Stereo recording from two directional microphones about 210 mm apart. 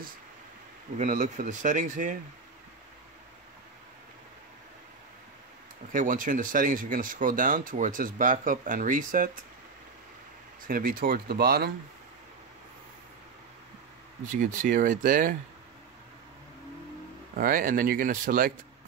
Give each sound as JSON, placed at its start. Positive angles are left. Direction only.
{"t": 0.9, "sound": "speech", "side_deg": -35}
{"t": 5.9, "sound": "speech", "side_deg": -40}
{"t": 10.7, "sound": "speech", "side_deg": -45}
{"t": 14.4, "sound": "speech", "side_deg": -40}
{"t": 17.4, "sound": "speech", "side_deg": -40}